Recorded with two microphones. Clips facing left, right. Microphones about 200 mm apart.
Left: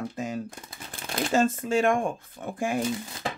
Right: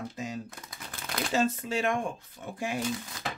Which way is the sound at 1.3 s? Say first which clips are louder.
Left 5 dB; 50° left (ahead or behind).